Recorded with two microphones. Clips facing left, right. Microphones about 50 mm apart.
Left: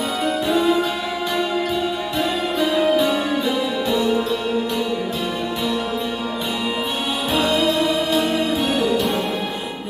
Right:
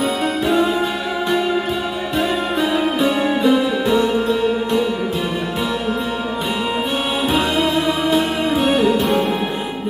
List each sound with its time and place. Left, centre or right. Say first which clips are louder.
2.8 s music: even; centre
8.6 s music: right 5 dB; centre